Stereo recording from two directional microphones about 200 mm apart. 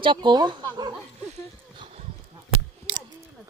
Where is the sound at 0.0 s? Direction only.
25° right (ahead or behind).